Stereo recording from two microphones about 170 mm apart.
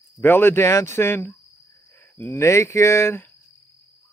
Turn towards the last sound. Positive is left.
turn(degrees=15)  # may be behind; listen again after turning